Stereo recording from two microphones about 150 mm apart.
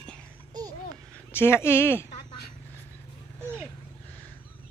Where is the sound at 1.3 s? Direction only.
15° left (ahead or behind).